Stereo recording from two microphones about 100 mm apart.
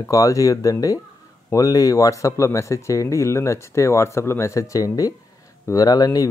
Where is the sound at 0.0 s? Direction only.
35° left (ahead or behind).